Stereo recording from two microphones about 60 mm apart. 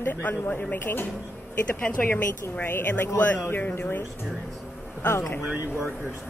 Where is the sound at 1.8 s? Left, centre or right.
Centre.